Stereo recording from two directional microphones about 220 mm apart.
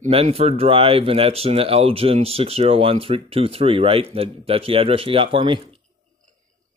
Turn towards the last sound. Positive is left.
turn(degrees=-25)  # may be behind; listen again after turning